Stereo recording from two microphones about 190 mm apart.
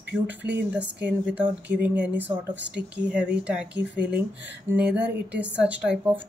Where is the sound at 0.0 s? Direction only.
10° right (ahead or behind).